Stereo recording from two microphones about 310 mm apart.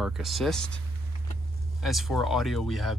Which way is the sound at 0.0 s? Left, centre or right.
Centre.